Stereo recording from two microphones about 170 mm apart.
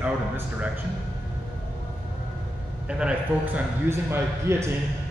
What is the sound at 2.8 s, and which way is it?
A man's voice, 5° right (ahead or behind).